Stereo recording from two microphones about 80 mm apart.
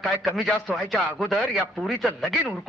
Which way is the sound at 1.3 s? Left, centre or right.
Centre.